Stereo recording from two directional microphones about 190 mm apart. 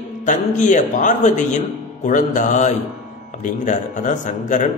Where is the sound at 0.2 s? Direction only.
40° left (ahead or behind).